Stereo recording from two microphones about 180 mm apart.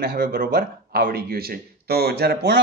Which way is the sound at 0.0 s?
60° right (ahead or behind).